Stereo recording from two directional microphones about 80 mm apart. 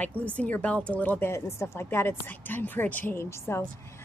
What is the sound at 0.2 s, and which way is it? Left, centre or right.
Speech, centre.